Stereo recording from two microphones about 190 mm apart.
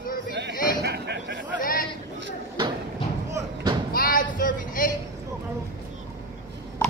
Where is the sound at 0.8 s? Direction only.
60° right (ahead or behind).